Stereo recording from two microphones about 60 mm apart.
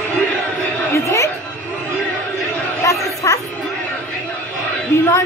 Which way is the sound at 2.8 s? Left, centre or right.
Left.